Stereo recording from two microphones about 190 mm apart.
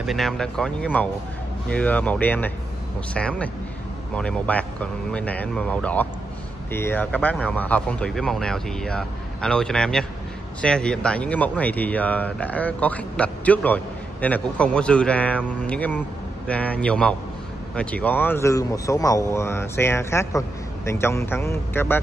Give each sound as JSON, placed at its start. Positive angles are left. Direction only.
{"t": 0.0, "sound": "speech", "side_deg": 0}